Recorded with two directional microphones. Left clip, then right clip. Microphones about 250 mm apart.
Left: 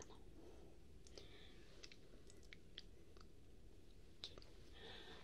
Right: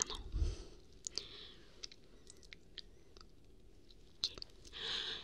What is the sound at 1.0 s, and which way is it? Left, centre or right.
Clicking, right.